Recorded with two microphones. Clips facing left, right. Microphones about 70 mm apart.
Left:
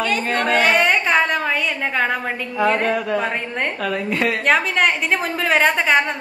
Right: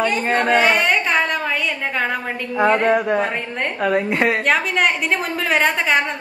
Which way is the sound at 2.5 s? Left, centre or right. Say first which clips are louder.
Right 3 dB; right.